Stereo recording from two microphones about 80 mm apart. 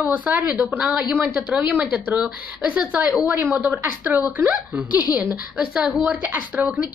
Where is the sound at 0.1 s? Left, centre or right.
Centre.